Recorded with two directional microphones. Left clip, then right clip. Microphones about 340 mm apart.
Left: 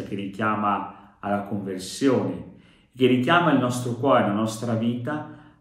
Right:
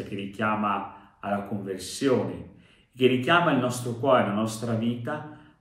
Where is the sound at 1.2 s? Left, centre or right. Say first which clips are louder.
Left 3 dB; centre.